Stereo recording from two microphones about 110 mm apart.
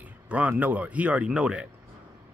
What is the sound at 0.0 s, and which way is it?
Speech, 15° right (ahead or behind).